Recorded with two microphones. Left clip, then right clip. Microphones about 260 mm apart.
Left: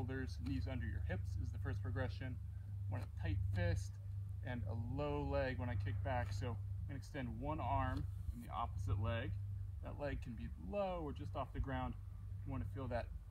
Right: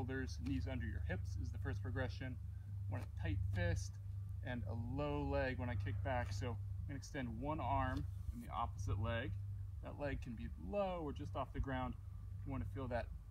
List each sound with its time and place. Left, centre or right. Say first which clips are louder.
0.0 s speech: right 2 dB; centre